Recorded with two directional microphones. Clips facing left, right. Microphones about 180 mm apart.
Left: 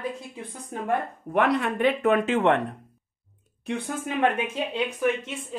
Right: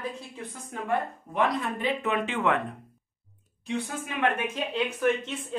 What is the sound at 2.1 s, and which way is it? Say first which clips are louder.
Speech: left 6 dB; 45° left (ahead or behind).